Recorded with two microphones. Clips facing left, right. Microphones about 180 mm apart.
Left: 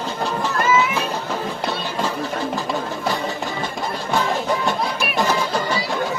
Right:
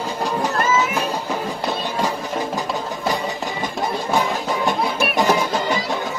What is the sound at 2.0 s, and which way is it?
Music, 15° right (ahead or behind).